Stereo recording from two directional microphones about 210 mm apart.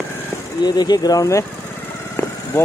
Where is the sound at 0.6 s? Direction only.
20° left (ahead or behind).